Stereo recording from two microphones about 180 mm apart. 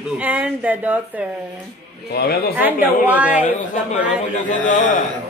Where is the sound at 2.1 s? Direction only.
60° left (ahead or behind).